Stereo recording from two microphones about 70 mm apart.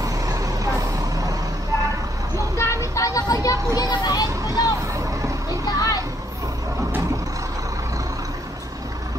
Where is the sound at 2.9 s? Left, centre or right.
Left.